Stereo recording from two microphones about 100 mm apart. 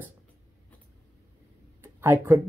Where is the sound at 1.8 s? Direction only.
25° right (ahead or behind).